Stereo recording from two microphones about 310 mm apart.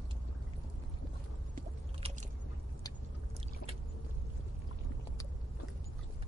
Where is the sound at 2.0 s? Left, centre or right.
Centre.